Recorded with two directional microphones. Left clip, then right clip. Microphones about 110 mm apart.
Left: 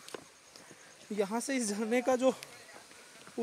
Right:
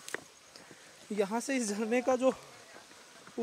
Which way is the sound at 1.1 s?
Centre (ahead or behind).